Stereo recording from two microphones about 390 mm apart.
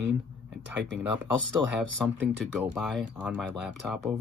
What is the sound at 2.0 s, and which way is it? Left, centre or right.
Speech, centre.